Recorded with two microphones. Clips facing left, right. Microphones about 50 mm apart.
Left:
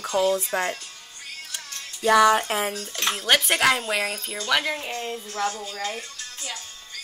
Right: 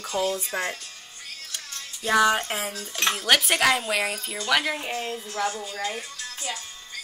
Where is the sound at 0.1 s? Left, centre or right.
Centre.